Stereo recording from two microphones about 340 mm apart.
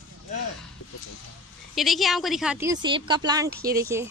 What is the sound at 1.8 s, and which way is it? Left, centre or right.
Speech, centre.